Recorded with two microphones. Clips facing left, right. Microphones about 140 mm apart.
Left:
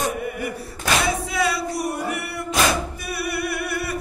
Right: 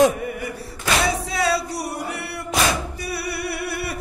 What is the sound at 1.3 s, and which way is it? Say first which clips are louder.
Music: right 1 dB; 35° right (ahead or behind).